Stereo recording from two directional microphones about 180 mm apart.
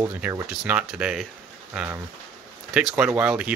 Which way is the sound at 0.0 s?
15° right (ahead or behind).